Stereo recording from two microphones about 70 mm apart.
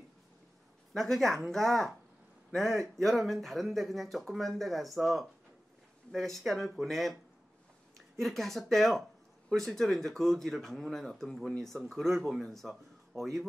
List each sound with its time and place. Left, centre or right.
0.9 s speech: centre
8.2 s speech: centre